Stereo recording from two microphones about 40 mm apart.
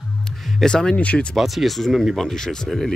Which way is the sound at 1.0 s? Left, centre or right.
Left.